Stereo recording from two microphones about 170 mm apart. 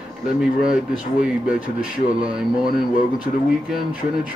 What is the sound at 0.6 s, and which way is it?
Speech, 5° right (ahead or behind).